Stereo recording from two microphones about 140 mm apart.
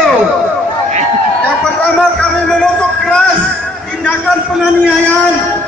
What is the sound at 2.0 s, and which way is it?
Music, 5° left (ahead or behind).